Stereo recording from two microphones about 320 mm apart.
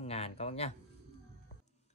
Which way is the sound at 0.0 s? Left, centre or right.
Centre.